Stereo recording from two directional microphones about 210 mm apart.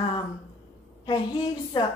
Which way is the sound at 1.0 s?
25° left (ahead or behind).